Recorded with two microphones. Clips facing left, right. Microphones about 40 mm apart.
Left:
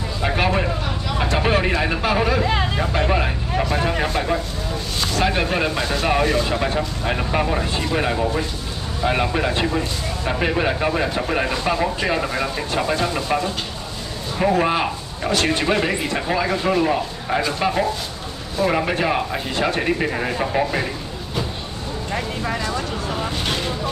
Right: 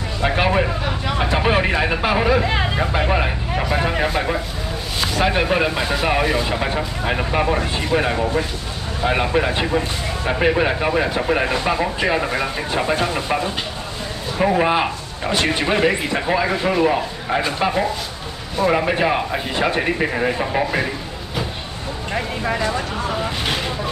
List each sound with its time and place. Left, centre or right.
0.2 s speech: centre
22.1 s speech: centre
23.0 s vehicle: centre